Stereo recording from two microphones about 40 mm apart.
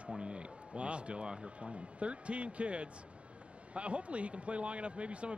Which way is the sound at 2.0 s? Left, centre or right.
Right.